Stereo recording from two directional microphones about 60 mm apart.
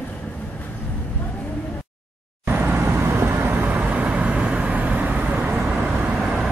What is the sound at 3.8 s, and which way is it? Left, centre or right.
Vehicle, right.